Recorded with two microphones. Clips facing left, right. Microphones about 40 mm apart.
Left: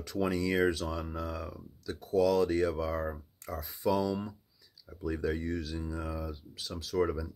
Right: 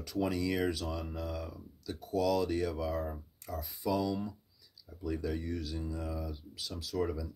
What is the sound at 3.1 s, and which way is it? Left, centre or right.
Speech, left.